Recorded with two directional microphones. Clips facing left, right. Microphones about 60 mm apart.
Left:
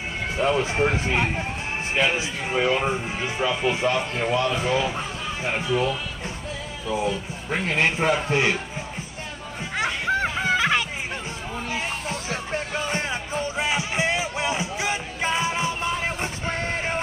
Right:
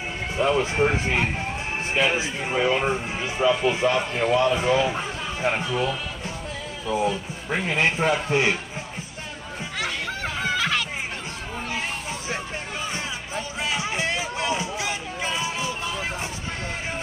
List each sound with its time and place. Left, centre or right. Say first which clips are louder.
0.4 s speech: right 1 dB; centre
2.0 s speech: even; centre
6.9 s speech: right 1 dB; centre
9.8 s children playing: left 6 dB; left
13.6 s a sound: left 1 dB; left